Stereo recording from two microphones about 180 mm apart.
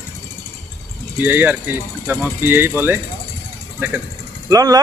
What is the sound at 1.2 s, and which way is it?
Speech, 10° right (ahead or behind).